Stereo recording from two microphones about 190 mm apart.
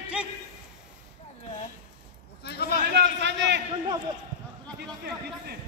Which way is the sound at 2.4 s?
60° left (ahead or behind).